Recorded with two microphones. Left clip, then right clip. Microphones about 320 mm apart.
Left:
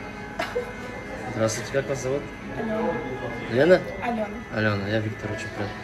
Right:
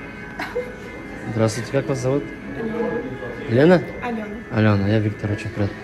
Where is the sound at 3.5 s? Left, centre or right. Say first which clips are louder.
Right 3 dB; centre.